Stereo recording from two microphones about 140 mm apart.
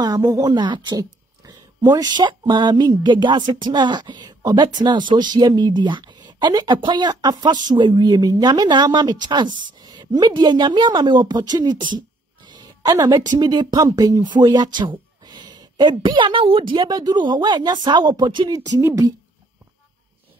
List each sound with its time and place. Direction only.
0.0 s a sound: 25° right (ahead or behind)
0.5 s a woman's voice: 35° right (ahead or behind)
18.8 s speech: 20° right (ahead or behind)